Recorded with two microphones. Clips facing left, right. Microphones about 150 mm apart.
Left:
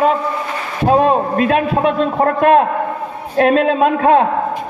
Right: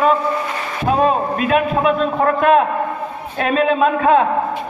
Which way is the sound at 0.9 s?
45° left (ahead or behind).